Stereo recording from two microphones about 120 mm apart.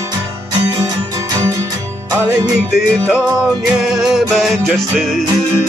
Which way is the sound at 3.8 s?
Centre (ahead or behind).